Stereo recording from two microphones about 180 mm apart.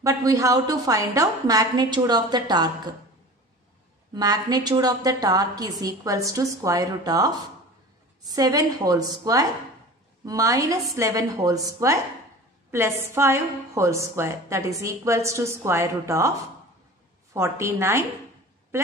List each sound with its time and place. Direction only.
0.0 s a woman's voice: 20° right (ahead or behind)
4.1 s a woman's voice: 20° right (ahead or behind)